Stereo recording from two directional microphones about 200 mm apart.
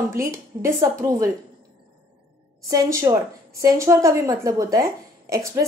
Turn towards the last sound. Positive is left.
turn(degrees=-15)  # may be behind; listen again after turning